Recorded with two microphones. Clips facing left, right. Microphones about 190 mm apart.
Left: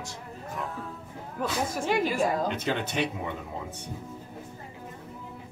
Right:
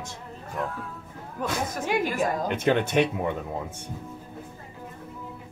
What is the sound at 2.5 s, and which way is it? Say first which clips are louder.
Speech: right 7 dB; 50° right (ahead or behind).